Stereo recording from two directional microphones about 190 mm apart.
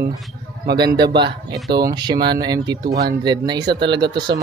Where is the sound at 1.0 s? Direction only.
25° right (ahead or behind).